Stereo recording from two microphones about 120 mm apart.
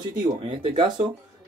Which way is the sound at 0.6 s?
45° right (ahead or behind).